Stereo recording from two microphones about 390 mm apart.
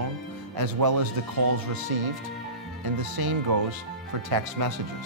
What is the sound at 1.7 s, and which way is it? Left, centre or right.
Speech, right.